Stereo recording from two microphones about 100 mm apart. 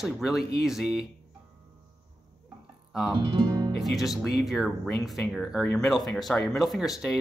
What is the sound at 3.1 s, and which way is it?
Music, 50° right (ahead or behind).